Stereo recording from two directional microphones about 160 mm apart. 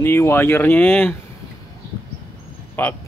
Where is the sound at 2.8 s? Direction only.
10° left (ahead or behind).